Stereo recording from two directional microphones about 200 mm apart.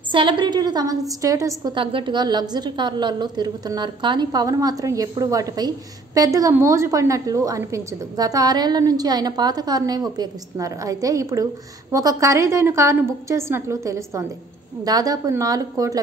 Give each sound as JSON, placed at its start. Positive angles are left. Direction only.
{"t": 0.1, "sound": "a woman's voice", "side_deg": -25}